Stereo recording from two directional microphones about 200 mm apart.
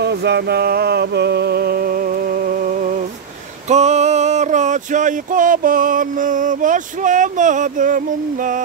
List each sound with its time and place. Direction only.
0.0 s music: 55° right (ahead or behind)
3.6 s male singing: 35° right (ahead or behind)